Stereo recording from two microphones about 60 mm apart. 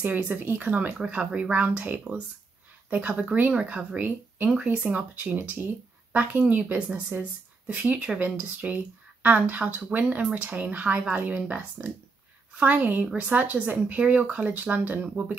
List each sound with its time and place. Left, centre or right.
0.0 s speech: right
0.9 s speech: centre